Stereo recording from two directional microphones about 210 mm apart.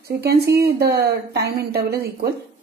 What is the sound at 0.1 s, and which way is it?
Speech, 50° right (ahead or behind).